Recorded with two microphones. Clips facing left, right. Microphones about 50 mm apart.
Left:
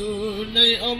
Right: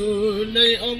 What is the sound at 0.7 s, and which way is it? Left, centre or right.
Music, centre.